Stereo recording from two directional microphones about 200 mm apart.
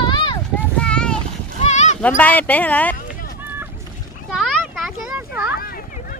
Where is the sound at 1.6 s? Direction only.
35° left (ahead or behind).